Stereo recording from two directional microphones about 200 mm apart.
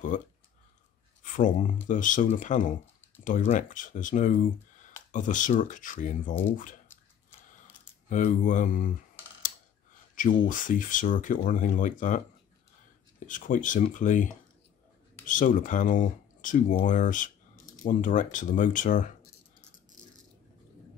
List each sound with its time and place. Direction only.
0.1 s speech: 40° left (ahead or behind)
8.1 s speech: 40° left (ahead or behind)
10.4 s speech: 40° left (ahead or behind)
13.2 s speech: 40° left (ahead or behind)